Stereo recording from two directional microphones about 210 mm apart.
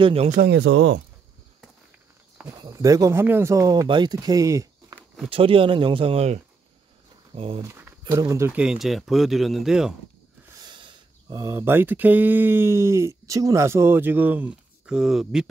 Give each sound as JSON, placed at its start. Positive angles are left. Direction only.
{"t": 0.0, "sound": "speech", "side_deg": -30}
{"t": 0.4, "sound": "speech", "side_deg": -55}
{"t": 2.6, "sound": "speech", "side_deg": -15}
{"t": 5.3, "sound": "speech", "side_deg": -25}
{"t": 10.6, "sound": "speech", "side_deg": -20}